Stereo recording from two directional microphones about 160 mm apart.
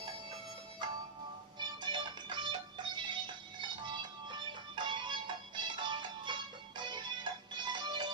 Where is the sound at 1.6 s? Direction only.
30° right (ahead or behind).